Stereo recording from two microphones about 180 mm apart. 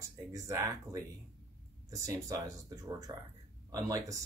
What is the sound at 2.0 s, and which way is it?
Speech, 15° right (ahead or behind).